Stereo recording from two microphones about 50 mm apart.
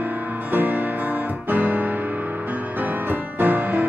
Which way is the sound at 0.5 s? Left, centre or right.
Right.